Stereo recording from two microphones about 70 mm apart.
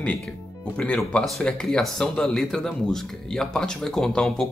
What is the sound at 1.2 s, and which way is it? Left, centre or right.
Speech, centre.